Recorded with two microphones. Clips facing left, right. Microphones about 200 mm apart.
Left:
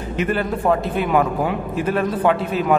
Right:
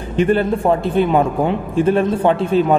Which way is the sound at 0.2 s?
30° right (ahead or behind).